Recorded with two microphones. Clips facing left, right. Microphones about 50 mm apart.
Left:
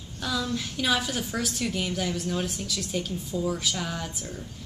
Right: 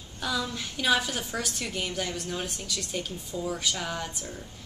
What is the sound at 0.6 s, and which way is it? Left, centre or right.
A woman's voice, centre.